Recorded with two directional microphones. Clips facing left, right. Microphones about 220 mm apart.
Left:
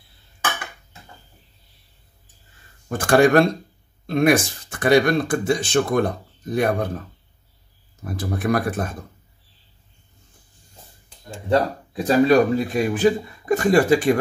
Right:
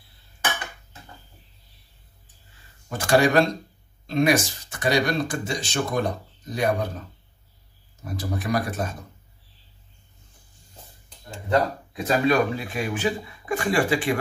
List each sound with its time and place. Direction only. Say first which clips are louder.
2.9 s speech: left 4 dB; 50° left (ahead or behind)
8.2 s speech: left 4 dB; 55° left (ahead or behind)
11.9 s a man's voice: left 6 dB; 35° left (ahead or behind)